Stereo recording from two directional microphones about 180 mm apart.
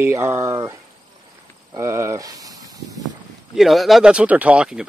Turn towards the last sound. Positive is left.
turn(degrees=-5)  # may be behind; listen again after turning